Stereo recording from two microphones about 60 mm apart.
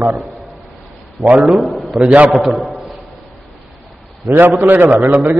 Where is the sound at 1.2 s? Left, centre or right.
Centre.